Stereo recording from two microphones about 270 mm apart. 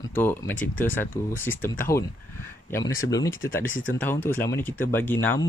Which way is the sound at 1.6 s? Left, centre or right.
Left.